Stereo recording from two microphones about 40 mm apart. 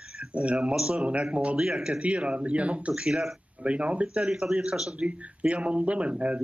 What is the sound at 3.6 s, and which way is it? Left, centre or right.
Speech, right.